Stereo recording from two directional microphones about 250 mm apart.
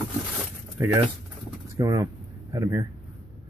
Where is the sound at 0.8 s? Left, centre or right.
Centre.